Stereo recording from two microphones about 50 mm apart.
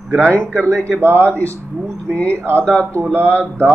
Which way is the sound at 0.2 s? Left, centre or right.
Right.